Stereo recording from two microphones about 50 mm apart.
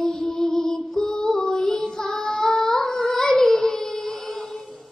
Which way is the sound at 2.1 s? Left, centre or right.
Centre.